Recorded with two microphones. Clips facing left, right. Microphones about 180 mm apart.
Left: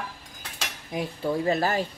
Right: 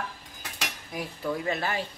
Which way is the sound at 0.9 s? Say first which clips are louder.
Left 5 dB; 25° left (ahead or behind).